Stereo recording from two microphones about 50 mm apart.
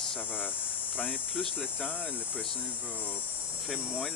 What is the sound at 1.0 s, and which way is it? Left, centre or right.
Hum, left.